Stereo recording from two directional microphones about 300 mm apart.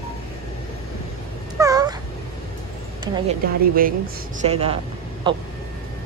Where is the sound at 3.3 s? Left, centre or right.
Right.